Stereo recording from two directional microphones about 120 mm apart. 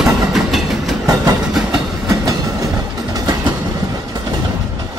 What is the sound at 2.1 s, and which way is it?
Train, 30° right (ahead or behind).